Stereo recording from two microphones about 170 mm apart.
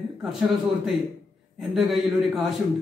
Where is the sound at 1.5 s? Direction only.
Centre (ahead or behind).